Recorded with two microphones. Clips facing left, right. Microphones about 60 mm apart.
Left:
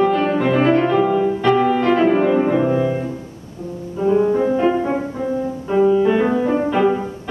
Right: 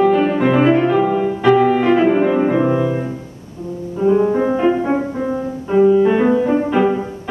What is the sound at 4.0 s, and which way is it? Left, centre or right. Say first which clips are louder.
Music: right 1 dB; centre.